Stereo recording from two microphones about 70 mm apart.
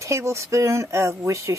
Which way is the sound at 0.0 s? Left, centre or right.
Right.